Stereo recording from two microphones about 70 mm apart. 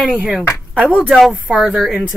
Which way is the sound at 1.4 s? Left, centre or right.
Centre.